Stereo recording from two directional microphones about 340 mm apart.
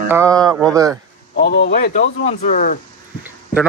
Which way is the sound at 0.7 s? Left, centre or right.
Centre.